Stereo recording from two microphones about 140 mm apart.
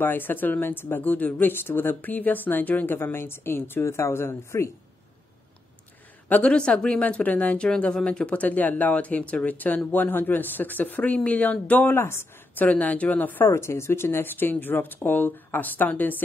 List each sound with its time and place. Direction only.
0.0 s a woman's voice: 15° left (ahead or behind)
6.2 s a woman's voice: 10° left (ahead or behind)